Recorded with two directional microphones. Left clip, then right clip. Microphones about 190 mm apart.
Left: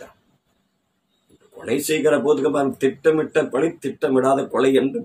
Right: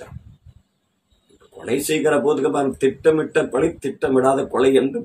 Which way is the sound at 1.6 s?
Centre (ahead or behind).